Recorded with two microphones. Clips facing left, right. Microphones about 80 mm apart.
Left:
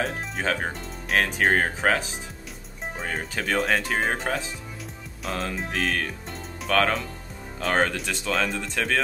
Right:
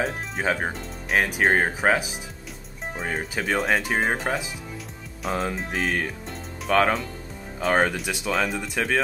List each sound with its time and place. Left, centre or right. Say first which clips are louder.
0.0 s speech: right 1 dB; centre
5.7 s speech: right 1 dB; centre